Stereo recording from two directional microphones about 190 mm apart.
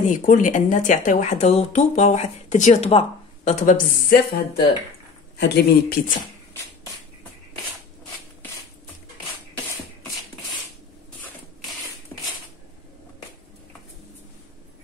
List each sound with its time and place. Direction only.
0.0 s speech: 40° left (ahead or behind)
5.4 s speech: 60° left (ahead or behind)